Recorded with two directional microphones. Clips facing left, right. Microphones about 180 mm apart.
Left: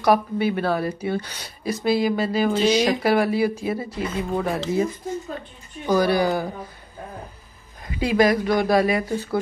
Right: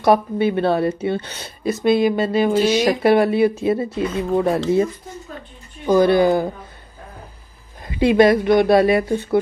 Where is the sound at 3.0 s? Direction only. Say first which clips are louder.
Right 5 dB; 25° right (ahead or behind).